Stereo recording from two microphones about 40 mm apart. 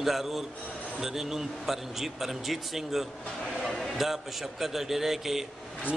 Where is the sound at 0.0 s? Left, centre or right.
Centre.